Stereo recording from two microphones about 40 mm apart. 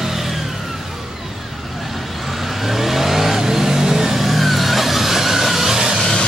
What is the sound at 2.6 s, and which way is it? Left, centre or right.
Vehicle, centre.